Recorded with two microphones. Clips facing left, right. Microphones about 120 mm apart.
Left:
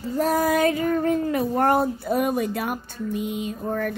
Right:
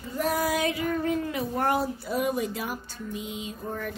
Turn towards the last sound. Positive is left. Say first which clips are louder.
# left 7 dB
turn(degrees=55)  # may be behind; listen again after turning